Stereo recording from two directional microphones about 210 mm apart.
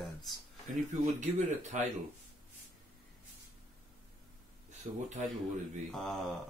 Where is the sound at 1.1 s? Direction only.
35° right (ahead or behind).